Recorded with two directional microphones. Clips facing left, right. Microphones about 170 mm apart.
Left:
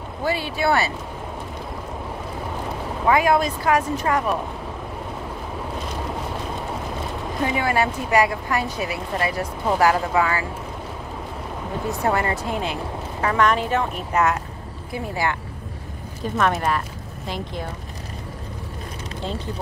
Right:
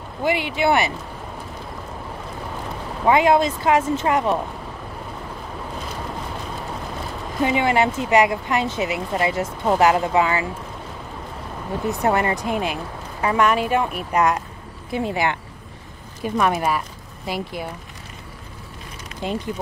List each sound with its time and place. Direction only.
0.2 s speech: 20° right (ahead or behind)
3.1 s speech: 25° right (ahead or behind)
7.4 s speech: 20° right (ahead or behind)
11.9 s speech: 20° right (ahead or behind)
16.2 s speech: 10° right (ahead or behind)
19.2 s speech: 15° right (ahead or behind)